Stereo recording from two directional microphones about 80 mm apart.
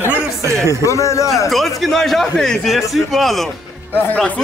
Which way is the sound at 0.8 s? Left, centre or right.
Left.